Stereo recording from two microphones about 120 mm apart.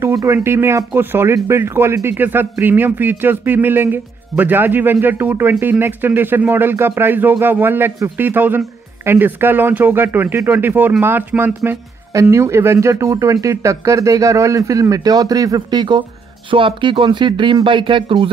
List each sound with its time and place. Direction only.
0.0 s speech: 25° right (ahead or behind); by 18.3 s 45° right (ahead or behind)